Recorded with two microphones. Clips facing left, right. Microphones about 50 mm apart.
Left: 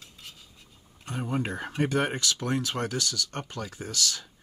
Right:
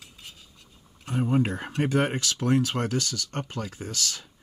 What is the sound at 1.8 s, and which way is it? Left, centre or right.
Speech, right.